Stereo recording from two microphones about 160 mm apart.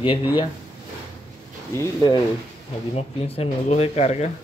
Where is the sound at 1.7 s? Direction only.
15° left (ahead or behind).